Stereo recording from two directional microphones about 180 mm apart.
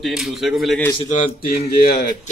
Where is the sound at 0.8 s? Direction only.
20° left (ahead or behind).